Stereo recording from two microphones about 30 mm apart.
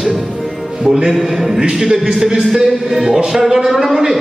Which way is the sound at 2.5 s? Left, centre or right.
Centre.